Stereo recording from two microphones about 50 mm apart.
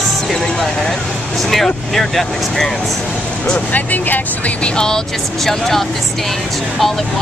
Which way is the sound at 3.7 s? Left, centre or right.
Left.